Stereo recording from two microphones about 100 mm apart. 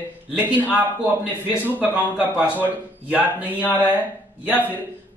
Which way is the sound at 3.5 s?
20° left (ahead or behind).